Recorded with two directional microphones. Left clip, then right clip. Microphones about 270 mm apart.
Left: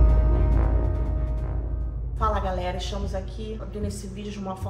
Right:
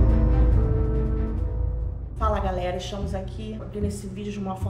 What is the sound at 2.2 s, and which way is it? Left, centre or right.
A woman's voice, centre.